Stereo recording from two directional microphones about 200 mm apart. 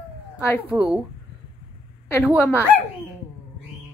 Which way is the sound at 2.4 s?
10° left (ahead or behind).